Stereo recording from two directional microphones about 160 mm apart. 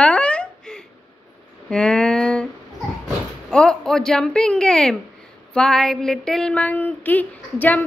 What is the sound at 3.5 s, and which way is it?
A woman's voice, 5° left (ahead or behind).